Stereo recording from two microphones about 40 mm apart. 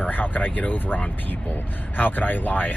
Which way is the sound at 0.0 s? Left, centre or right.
Left.